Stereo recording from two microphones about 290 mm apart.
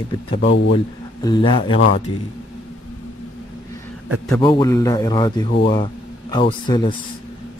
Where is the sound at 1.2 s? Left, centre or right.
Centre.